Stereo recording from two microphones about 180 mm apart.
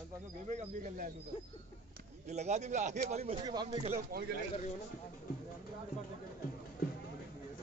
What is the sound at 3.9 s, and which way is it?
Speech, 50° right (ahead or behind).